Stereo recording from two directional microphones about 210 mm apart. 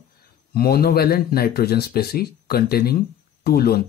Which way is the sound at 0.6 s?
45° left (ahead or behind).